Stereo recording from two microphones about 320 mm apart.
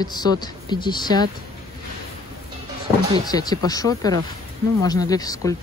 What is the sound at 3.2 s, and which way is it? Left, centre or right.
A woman's voice, centre.